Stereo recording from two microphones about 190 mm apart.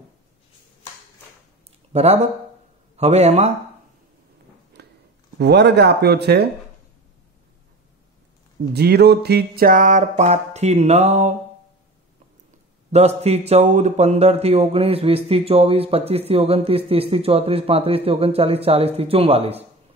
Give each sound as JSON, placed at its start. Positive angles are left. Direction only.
{"t": 1.9, "sound": "speech", "side_deg": -35}
{"t": 4.8, "sound": "a sound", "side_deg": -60}
{"t": 5.4, "sound": "speech", "side_deg": -65}
{"t": 8.7, "sound": "speech", "side_deg": -60}
{"t": 12.9, "sound": "speech", "side_deg": -35}